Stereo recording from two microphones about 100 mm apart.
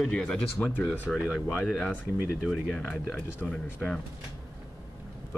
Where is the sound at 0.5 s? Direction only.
20° left (ahead or behind).